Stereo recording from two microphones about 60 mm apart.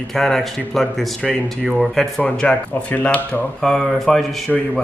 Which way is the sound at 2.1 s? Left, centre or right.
Centre.